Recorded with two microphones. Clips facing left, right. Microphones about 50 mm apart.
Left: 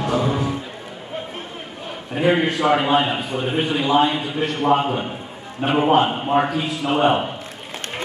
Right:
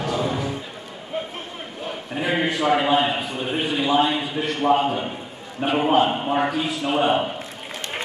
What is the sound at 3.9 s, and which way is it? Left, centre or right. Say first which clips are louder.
Speech: left 3 dB; left.